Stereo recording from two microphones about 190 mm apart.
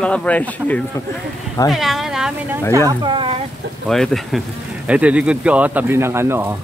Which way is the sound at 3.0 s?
25° right (ahead or behind).